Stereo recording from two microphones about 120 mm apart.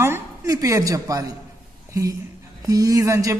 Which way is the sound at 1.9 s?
25° right (ahead or behind).